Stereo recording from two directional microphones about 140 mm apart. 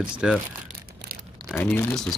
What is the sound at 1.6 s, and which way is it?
Speech, 15° left (ahead or behind).